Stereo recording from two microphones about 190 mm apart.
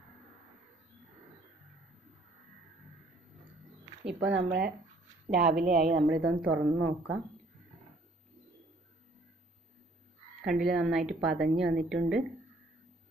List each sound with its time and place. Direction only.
4.2 s speech: 70° right (ahead or behind)
6.2 s a woman's voice: 10° right (ahead or behind)
10.4 s a woman's voice: centre (ahead or behind)